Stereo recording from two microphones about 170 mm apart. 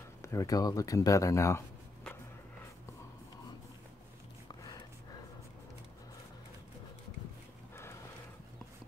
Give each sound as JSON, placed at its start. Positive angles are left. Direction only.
{"t": 0.2, "sound": "speech", "side_deg": 20}